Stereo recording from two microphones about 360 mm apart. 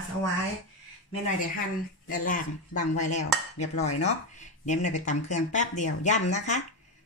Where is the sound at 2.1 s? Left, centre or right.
Left.